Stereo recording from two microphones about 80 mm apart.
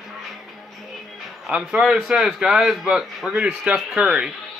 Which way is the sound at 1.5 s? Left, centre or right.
Centre.